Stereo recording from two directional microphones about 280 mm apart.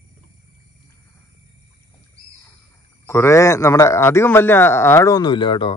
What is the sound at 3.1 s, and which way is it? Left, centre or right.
Speech, centre.